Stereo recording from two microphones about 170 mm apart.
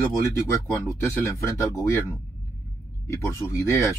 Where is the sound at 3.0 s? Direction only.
15° left (ahead or behind).